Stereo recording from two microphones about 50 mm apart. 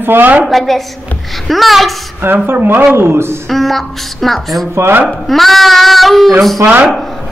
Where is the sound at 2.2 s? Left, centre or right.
Right.